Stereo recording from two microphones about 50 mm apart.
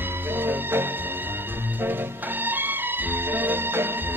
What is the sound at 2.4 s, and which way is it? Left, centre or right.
Music, right.